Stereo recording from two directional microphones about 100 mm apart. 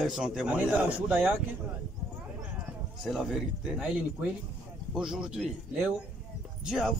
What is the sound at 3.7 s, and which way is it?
A man's voice, 15° right (ahead or behind).